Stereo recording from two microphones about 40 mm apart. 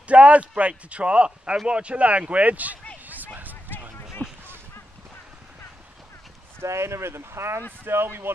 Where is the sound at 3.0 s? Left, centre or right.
Right.